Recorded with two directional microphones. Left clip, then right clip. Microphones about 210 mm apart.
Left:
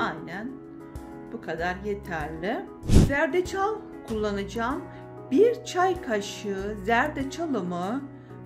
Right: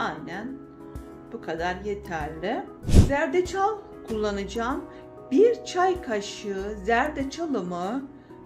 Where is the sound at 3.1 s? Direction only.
15° left (ahead or behind).